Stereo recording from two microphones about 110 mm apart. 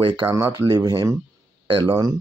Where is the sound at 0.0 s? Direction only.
50° right (ahead or behind).